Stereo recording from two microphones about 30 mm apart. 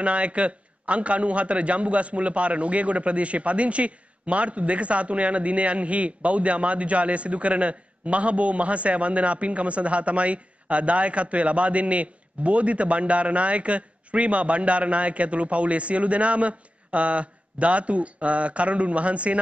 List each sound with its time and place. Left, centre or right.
0.0 s a man's voice: right